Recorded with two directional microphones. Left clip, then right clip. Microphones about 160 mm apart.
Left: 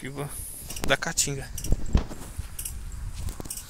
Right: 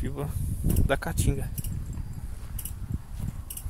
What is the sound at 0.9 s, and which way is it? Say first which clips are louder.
Speech: left 4 dB; 30° right (ahead or behind).